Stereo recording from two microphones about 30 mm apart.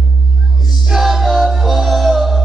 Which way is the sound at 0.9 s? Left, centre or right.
Centre.